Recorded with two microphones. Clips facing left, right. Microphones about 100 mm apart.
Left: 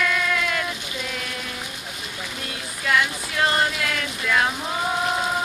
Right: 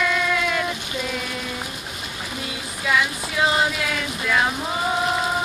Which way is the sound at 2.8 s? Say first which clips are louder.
Even; 5° right (ahead or behind).